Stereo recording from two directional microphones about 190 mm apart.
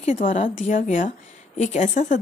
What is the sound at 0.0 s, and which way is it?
A woman's voice, 40° left (ahead or behind).